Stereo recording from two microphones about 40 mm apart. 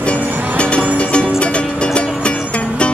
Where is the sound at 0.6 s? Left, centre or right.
Left.